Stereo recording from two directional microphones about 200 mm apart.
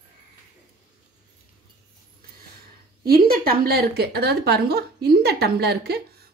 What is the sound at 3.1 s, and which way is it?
Dishes, 45° right (ahead or behind).